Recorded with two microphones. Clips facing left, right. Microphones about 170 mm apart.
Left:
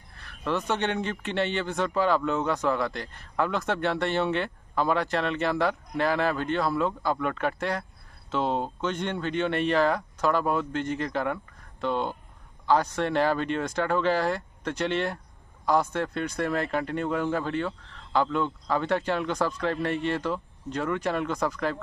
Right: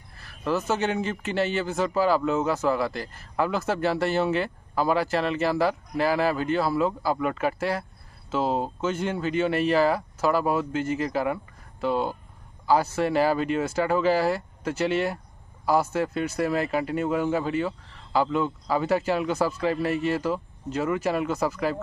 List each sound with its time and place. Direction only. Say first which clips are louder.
0.1 s a man's voice: right 2 dB; 5° right (ahead or behind)